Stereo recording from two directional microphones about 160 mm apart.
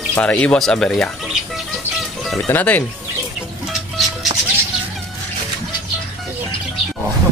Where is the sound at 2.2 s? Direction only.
Centre (ahead or behind).